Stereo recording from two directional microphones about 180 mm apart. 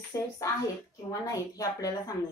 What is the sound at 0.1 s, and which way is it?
A woman's voice, 20° left (ahead or behind).